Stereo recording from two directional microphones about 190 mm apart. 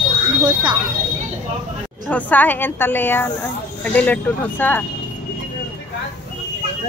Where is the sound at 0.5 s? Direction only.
25° right (ahead or behind).